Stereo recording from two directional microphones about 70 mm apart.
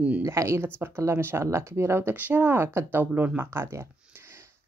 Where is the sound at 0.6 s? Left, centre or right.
Right.